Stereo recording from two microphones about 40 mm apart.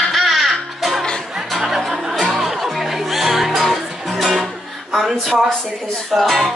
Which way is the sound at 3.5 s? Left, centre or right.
Centre.